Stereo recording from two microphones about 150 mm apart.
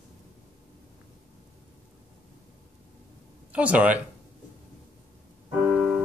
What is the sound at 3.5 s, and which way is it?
Speech, 10° right (ahead or behind).